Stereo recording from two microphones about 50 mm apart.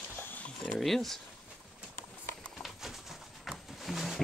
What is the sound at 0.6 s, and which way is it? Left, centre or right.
Speech, centre.